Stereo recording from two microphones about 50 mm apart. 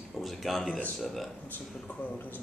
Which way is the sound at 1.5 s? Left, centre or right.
Left.